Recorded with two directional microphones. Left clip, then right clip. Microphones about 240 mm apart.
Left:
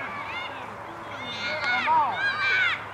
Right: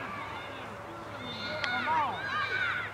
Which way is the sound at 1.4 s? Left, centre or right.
Centre.